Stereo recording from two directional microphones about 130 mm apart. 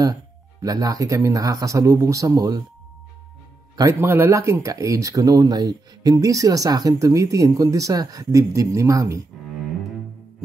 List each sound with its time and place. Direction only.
0.0 s speech: 30° right (ahead or behind)
3.7 s speech: 25° right (ahead or behind)